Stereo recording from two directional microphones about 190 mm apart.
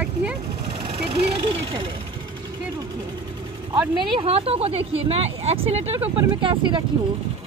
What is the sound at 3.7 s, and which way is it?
Speech, 25° right (ahead or behind).